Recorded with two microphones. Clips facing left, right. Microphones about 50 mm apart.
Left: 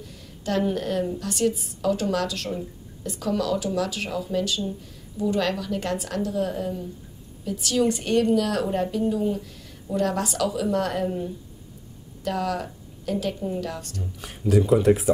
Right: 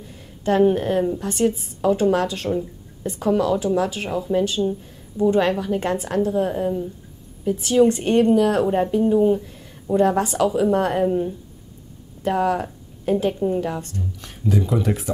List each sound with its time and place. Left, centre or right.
0.0 s a woman's voice: right
12.2 s a woman's voice: right
14.2 s speech: centre